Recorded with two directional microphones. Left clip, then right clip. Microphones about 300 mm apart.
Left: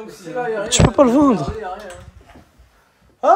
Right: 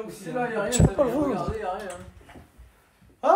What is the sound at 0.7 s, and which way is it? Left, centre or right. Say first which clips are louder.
Speech: left 12 dB; left.